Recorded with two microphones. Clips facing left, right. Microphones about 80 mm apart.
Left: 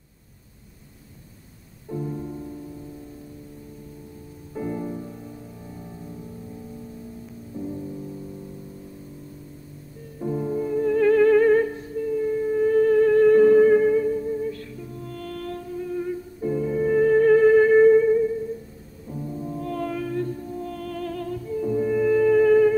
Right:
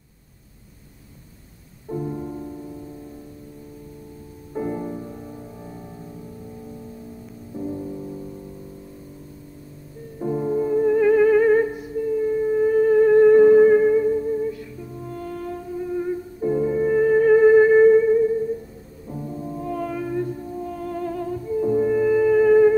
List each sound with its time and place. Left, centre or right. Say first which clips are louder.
1.9 s music: right 2 dB; centre
4.6 s music: right 2 dB; centre
7.5 s music: right 3 dB; centre
10.1 s music: right 3 dB; centre